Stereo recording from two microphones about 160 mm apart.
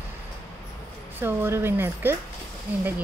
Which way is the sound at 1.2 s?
15° right (ahead or behind).